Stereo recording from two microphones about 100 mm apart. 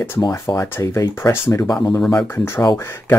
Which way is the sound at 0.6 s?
30° left (ahead or behind).